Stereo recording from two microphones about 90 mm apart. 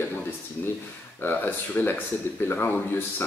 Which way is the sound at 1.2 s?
20° left (ahead or behind).